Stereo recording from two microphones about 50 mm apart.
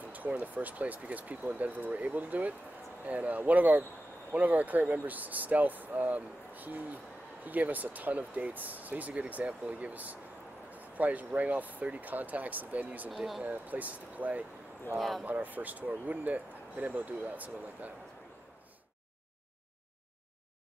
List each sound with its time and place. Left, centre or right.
0.4 s speech: right
13.1 s speech: centre
13.4 s speech: right
15.0 s speech: centre
15.2 s speech: right